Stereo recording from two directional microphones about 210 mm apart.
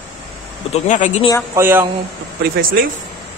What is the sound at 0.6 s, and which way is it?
Speech, 35° left (ahead or behind).